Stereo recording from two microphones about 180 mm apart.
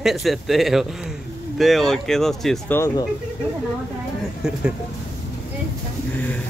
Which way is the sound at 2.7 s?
20° left (ahead or behind).